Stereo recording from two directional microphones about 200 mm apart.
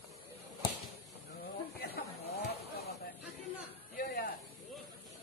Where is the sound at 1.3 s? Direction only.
50° left (ahead or behind).